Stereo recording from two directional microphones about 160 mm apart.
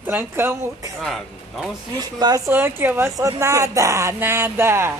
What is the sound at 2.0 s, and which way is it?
A woman's voice, 25° right (ahead or behind).